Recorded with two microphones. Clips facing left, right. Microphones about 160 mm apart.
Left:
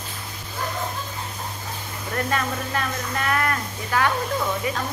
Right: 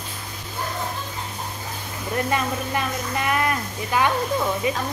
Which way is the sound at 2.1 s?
15° right (ahead or behind).